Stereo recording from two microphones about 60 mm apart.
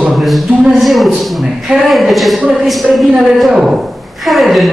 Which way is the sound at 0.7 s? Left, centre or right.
Centre.